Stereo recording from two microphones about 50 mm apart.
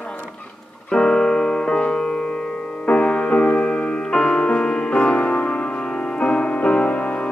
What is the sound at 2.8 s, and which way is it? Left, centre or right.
Music, left.